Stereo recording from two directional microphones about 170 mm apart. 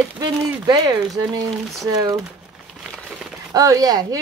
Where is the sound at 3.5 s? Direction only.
20° right (ahead or behind).